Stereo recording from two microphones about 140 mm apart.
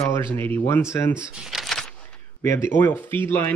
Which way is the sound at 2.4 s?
20° left (ahead or behind).